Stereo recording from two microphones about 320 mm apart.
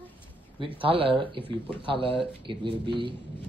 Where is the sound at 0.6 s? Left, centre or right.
Centre.